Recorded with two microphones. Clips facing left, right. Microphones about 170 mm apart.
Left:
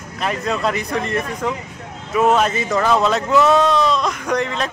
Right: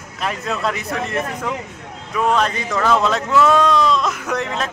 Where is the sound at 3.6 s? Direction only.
Centre (ahead or behind).